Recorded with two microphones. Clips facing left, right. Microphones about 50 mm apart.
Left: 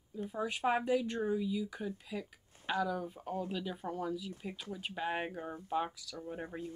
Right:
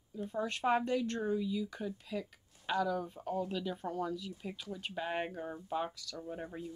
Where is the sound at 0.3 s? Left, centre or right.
Centre.